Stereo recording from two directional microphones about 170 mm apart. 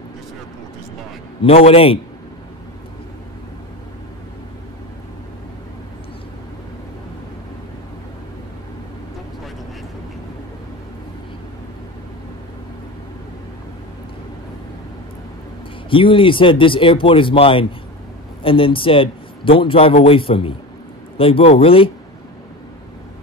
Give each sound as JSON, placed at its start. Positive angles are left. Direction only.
{"t": 1.4, "sound": "a man's voice", "side_deg": 35}
{"t": 15.9, "sound": "a man's voice", "side_deg": 30}